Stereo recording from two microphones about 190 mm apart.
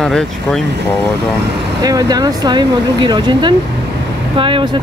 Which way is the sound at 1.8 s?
20° right (ahead or behind).